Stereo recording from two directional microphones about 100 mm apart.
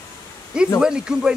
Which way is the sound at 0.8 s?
10° right (ahead or behind).